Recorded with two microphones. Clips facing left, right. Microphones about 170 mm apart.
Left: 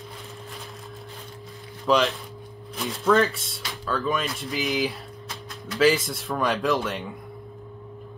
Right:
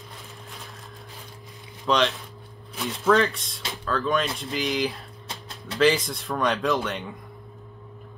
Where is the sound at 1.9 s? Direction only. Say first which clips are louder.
Left 1 dB; 5° left (ahead or behind).